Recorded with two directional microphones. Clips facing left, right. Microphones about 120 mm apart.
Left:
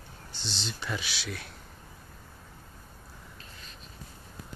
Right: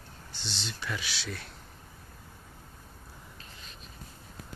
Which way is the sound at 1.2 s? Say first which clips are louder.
Left 1 dB; 5° left (ahead or behind).